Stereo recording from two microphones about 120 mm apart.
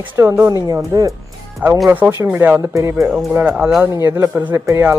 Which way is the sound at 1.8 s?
15° right (ahead or behind).